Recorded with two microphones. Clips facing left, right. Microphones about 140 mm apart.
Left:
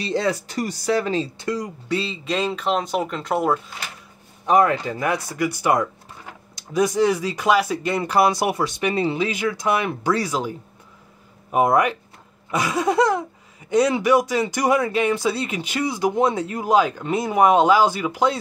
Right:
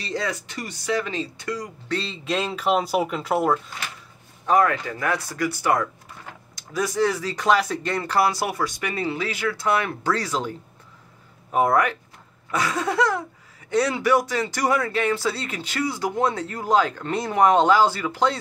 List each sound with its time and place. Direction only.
0.0 s speech: 30° left (ahead or behind)
1.9 s speech: 5° left (ahead or behind)
4.5 s speech: 20° left (ahead or behind)
11.5 s speech: 15° left (ahead or behind)